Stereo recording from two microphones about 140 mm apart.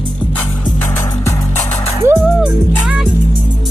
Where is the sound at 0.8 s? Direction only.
20° left (ahead or behind).